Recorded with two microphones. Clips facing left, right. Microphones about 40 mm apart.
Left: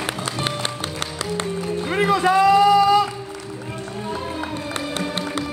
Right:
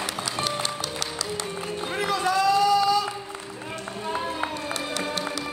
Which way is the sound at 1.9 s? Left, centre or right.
Left.